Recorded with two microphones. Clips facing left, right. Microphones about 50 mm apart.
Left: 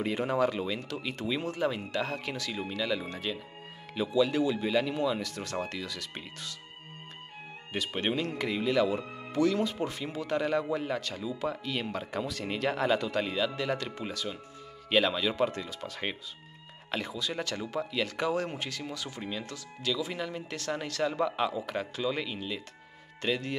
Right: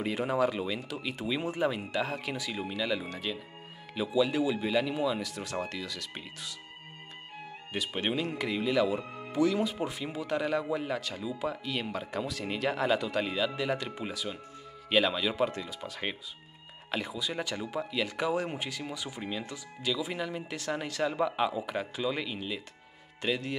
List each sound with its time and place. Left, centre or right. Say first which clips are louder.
0.0 s speech: even; centre
7.7 s speech: left 1 dB; centre